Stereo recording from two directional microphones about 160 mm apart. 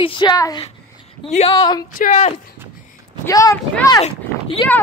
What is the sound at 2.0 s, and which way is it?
Speech, 45° left (ahead or behind).